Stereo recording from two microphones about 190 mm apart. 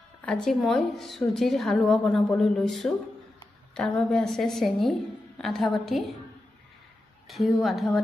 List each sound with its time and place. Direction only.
0.2 s a woman's voice: 5° left (ahead or behind)
7.2 s a woman's voice: centre (ahead or behind)